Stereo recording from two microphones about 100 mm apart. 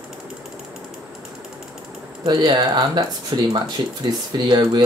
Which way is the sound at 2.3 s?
45° right (ahead or behind).